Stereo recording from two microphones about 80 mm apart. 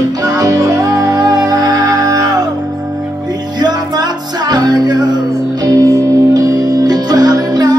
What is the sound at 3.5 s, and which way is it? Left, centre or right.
Music, right.